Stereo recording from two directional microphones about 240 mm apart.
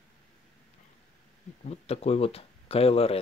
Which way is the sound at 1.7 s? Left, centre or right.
Left.